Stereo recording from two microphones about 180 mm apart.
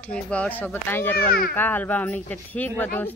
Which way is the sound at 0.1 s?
5° left (ahead or behind).